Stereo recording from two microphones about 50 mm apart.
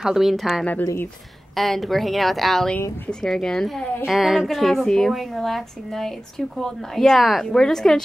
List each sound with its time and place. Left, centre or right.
0.0 s a woman's voice: centre
3.1 s speech: centre
4.1 s a woman's voice: centre